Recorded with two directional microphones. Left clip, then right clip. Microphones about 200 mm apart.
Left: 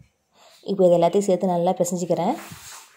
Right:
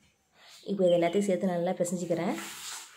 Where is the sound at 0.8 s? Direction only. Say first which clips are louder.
Left 8 dB; 25° left (ahead or behind).